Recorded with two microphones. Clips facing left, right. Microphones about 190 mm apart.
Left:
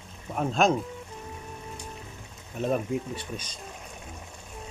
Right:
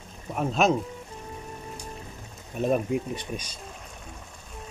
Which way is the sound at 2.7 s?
15° right (ahead or behind).